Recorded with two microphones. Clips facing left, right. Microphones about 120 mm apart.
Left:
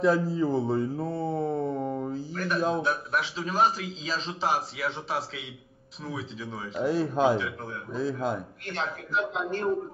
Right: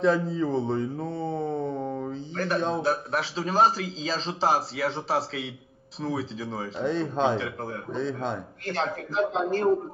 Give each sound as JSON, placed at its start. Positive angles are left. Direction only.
{"t": 0.0, "sound": "mantra", "side_deg": 5}
{"t": 2.3, "sound": "a man's voice", "side_deg": -30}
{"t": 6.8, "sound": "speech", "side_deg": 5}
{"t": 7.3, "sound": "a man's voice", "side_deg": -40}
{"t": 7.9, "sound": "mantra", "side_deg": 5}
{"t": 8.6, "sound": "a man's voice", "side_deg": -40}